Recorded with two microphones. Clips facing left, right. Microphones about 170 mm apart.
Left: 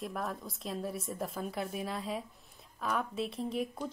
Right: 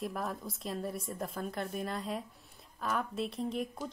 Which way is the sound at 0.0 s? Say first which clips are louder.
Right 1 dB; centre (ahead or behind).